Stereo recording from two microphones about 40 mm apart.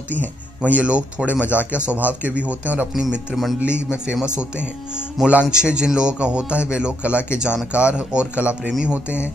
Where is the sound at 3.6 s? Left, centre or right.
Right.